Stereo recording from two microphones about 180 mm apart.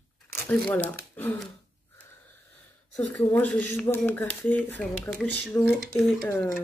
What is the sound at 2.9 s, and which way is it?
Speech, 5° left (ahead or behind).